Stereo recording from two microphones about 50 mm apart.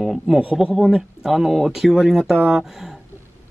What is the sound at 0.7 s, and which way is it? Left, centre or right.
Speech, centre.